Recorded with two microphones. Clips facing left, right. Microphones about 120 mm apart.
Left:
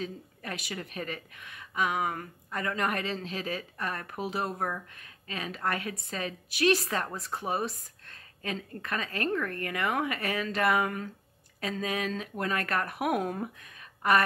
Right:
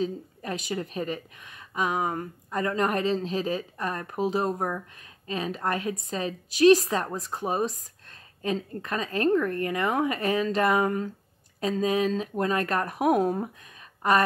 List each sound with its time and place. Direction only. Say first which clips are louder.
0.0 s speech: right 8 dB; 25° right (ahead or behind)
4.6 s speech: right 3 dB; 15° right (ahead or behind)
5.2 s speech: right 4 dB; 30° right (ahead or behind)